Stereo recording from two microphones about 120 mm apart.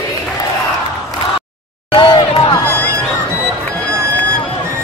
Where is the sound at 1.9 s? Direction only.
45° left (ahead or behind).